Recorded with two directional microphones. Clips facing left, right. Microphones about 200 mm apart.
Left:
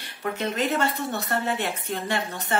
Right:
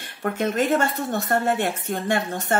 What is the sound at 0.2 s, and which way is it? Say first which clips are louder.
Speech: right 4 dB; 50° right (ahead or behind).